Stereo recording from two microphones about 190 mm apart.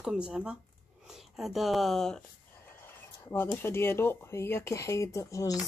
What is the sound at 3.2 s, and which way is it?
A woman's voice, 10° left (ahead or behind).